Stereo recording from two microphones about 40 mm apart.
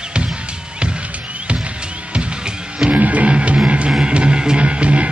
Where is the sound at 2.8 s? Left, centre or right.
Right.